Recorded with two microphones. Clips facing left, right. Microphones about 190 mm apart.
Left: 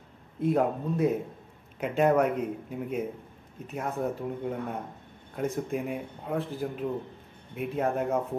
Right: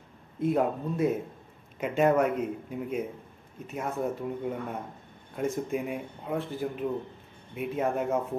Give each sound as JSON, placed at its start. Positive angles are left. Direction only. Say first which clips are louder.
{"t": 0.4, "sound": "a man's voice", "louder": "left 1 dB", "side_deg": -5}